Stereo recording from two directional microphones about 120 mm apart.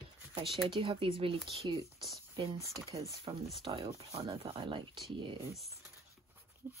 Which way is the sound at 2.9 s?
30° right (ahead or behind).